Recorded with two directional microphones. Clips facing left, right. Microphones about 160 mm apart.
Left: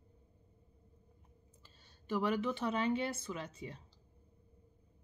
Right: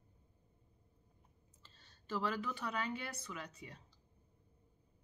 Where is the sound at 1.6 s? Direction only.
10° left (ahead or behind).